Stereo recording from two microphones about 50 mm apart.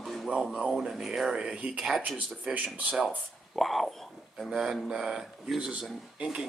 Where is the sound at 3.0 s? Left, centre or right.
Centre.